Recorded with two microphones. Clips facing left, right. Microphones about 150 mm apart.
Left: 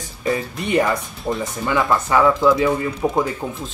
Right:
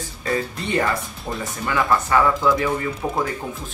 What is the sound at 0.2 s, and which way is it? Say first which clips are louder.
Speech: left 2 dB; 20° left (ahead or behind).